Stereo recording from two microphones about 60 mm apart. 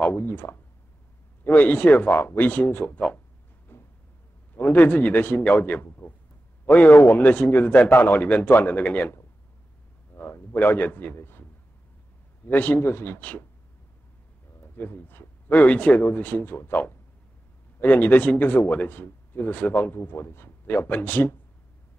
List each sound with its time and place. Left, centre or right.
0.0 s speech: left
0.3 s speech: left
3.7 s a sound: left
4.6 s a man's voice: left
6.9 s speech: left
7.2 s speech: left
10.1 s a man's voice: left
12.4 s speech: left
12.9 s speech: left
14.8 s speech: left